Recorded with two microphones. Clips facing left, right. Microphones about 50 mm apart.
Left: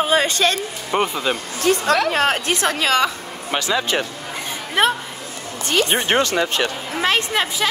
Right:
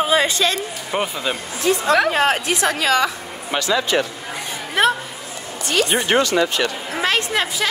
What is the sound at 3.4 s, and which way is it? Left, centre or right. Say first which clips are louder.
Speech: right 1 dB; left.